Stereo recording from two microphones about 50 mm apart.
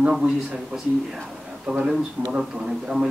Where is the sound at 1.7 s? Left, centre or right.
Right.